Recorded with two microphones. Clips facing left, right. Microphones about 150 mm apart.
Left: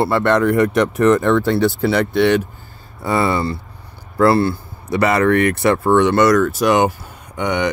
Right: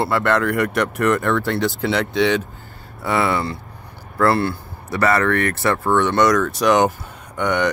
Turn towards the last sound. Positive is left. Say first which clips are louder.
# even
turn(degrees=15)  # may be behind; listen again after turning